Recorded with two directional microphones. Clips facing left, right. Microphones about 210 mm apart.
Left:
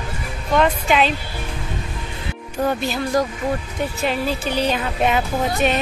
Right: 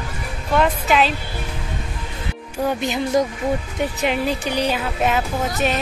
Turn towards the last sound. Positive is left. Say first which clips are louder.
# left 2 dB
turn(degrees=0)  # may be behind; listen again after turning